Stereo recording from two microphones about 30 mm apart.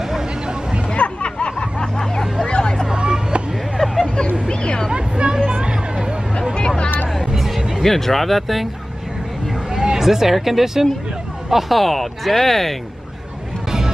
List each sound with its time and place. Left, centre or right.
0.9 s a sound: left
2.9 s vehicle: right
3.7 s hubbub: centre
4.5 s a sound: left
4.9 s hubbub: right
5.6 s a sound: right
7.3 s music: centre
7.8 s speech: centre
9.8 s speech: centre
11.5 s speech: centre
13.7 s music: centre